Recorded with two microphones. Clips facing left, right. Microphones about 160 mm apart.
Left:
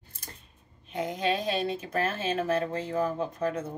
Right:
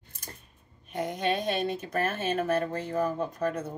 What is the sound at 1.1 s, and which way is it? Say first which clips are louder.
Speech: even; 30° left (ahead or behind).